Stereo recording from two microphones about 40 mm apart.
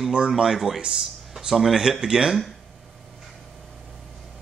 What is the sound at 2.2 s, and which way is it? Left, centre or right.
Speech, centre.